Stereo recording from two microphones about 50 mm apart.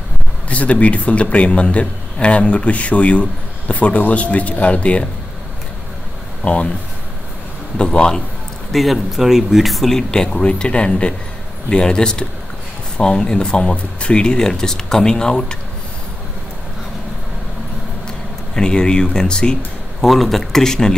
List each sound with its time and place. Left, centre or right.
0.5 s speech: left
6.4 s speech: left
7.7 s speech: centre
8.7 s speech: centre
18.5 s speech: centre
20.0 s speech: centre